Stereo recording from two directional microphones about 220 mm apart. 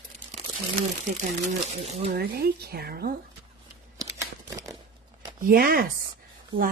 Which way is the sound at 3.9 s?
15° right (ahead or behind).